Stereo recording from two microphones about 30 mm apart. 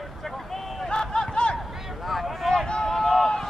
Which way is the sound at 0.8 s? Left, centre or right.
Left.